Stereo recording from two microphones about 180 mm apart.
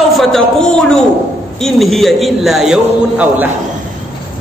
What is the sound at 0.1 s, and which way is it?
A man's voice, centre (ahead or behind).